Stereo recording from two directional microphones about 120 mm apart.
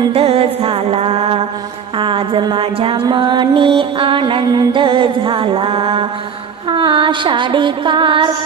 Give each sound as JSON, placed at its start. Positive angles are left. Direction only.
{"t": 0.1, "sound": "music", "side_deg": -55}
{"t": 2.0, "sound": "a sound", "side_deg": -45}
{"t": 2.4, "sound": "mantra", "side_deg": -45}